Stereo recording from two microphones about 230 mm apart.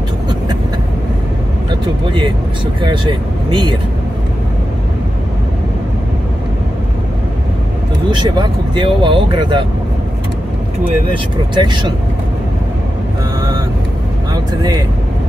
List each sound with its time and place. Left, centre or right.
3.4 s speech: centre
8.2 s speech: centre
11.5 s speech: centre
14.3 s speech: centre